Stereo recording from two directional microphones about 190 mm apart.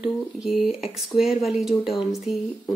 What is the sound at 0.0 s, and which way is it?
Speech, 5° right (ahead or behind).